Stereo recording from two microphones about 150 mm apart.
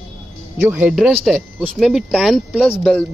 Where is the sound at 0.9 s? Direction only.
Centre (ahead or behind).